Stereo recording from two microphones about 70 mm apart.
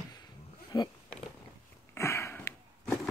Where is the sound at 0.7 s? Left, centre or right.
Left.